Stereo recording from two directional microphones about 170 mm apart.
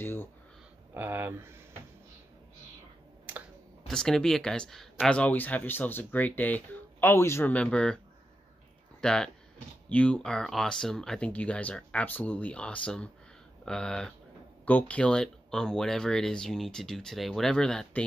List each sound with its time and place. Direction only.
0.0 s a sound: 10° left (ahead or behind)
0.9 s speech: 10° right (ahead or behind)
3.8 s speech: 5° left (ahead or behind)
9.0 s speech: 5° left (ahead or behind)